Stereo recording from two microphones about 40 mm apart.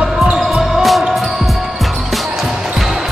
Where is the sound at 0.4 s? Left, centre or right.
Centre.